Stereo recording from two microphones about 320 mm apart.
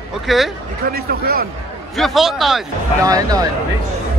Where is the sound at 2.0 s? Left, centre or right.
Centre.